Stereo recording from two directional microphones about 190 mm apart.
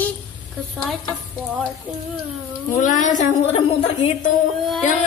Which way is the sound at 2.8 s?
40° left (ahead or behind).